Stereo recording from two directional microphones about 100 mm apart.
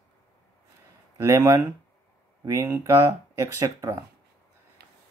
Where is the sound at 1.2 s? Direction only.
30° right (ahead or behind).